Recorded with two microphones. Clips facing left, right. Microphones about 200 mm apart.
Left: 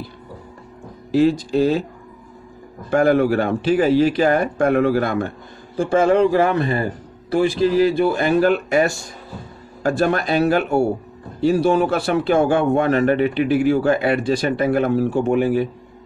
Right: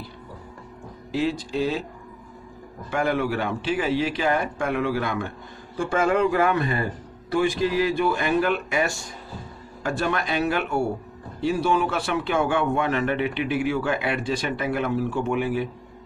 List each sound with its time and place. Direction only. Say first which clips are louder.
1.1 s speech: left 9 dB; 45° left (ahead or behind)
2.9 s a man's voice: left 8 dB; 40° left (ahead or behind)